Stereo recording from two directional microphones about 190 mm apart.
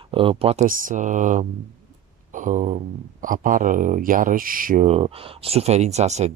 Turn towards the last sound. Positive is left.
turn(degrees=-35)  # may be behind; listen again after turning